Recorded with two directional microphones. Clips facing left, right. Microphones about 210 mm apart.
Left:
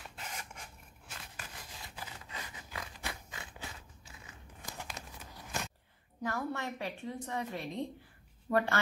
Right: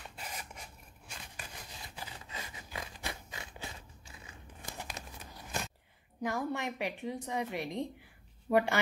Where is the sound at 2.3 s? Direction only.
25° right (ahead or behind).